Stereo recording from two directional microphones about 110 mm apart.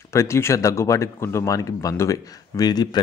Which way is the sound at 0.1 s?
25° left (ahead or behind).